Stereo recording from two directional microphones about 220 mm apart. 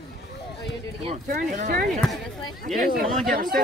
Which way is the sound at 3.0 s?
40° right (ahead or behind).